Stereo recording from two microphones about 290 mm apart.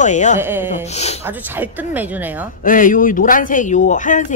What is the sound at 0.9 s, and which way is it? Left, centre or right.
Speech, left.